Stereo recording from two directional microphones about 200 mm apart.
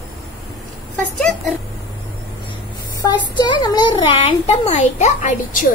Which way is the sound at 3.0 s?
20° left (ahead or behind).